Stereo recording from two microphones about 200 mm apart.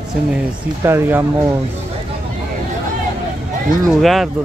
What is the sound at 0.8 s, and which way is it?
Speech, 10° right (ahead or behind).